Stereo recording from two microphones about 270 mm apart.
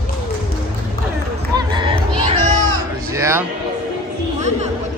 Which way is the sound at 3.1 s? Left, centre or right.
Centre.